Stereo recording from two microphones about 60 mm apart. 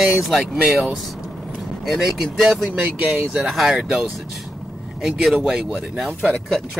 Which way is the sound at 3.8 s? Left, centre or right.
Centre.